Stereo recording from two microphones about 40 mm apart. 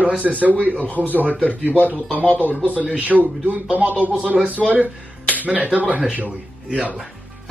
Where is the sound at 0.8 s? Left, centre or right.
Left.